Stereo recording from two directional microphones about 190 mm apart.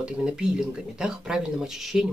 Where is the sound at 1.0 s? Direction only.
5° right (ahead or behind).